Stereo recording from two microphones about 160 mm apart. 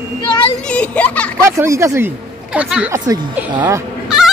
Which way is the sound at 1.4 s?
15° right (ahead or behind).